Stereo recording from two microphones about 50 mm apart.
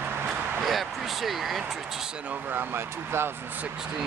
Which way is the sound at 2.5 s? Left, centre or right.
Right.